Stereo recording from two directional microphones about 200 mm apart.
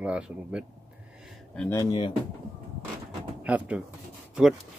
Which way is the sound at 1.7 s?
20° left (ahead or behind).